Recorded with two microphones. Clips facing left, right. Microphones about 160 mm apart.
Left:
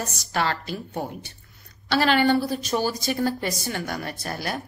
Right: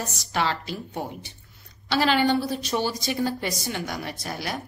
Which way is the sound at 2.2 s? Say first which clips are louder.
Left 2 dB; centre (ahead or behind).